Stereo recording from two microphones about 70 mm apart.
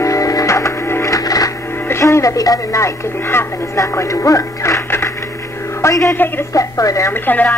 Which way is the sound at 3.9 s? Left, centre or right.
Left.